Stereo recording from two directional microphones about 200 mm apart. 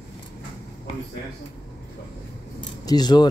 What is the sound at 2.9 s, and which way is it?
Speech, 20° left (ahead or behind).